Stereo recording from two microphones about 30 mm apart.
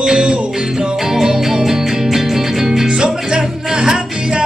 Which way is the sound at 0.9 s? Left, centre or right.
Centre.